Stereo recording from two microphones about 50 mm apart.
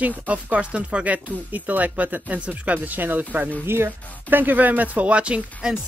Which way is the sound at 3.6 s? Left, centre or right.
Right.